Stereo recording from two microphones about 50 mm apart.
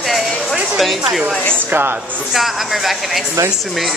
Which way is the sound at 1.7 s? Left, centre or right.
Right.